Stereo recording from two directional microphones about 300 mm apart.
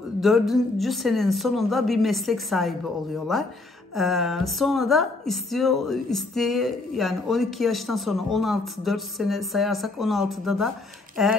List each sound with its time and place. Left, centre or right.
0.2 s speech: centre
3.9 s speech: centre